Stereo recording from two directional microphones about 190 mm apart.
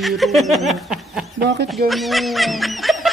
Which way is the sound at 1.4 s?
65° right (ahead or behind).